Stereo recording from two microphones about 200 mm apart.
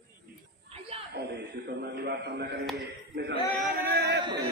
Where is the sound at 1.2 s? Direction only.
55° right (ahead or behind).